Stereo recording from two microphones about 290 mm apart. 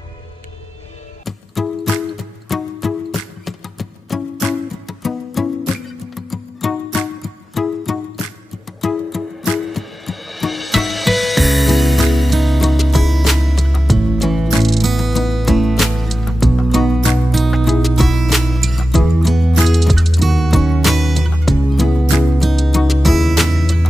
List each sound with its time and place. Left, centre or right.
1.2 s music: centre